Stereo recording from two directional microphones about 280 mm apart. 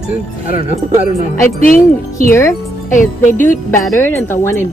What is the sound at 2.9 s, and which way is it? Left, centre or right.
Jingle bell, left.